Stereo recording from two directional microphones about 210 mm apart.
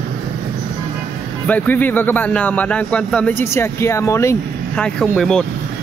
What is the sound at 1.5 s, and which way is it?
Speech, 10° left (ahead or behind).